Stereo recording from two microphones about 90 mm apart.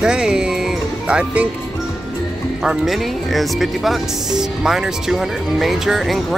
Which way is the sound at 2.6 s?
5° right (ahead or behind).